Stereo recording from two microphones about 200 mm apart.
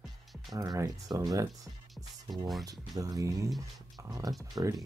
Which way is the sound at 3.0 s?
15° right (ahead or behind).